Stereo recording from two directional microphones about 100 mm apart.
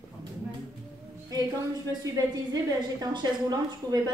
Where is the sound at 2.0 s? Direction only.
35° right (ahead or behind).